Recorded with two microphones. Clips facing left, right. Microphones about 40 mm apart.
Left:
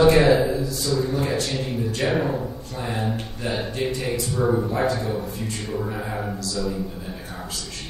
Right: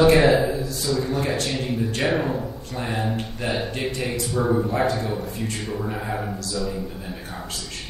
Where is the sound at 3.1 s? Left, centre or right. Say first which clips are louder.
Right 2 dB; right.